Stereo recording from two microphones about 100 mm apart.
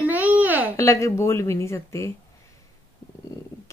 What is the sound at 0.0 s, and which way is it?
Babbling, 20° right (ahead or behind).